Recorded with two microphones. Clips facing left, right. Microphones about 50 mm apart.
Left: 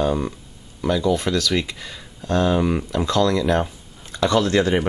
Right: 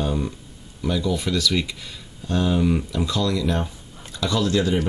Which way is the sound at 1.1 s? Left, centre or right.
Left.